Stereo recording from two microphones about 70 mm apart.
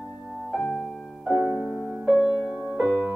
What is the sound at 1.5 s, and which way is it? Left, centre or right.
Music, centre.